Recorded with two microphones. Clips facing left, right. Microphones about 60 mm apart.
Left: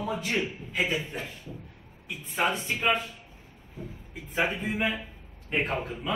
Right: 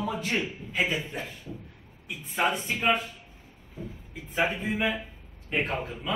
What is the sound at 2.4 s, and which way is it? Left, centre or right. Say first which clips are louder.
Speech: right 1 dB; right.